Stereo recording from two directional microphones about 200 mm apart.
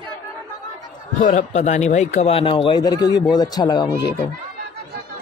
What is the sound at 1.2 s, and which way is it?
A man's voice, 40° left (ahead or behind).